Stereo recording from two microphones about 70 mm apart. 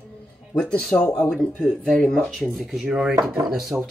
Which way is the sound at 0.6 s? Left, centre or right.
Centre.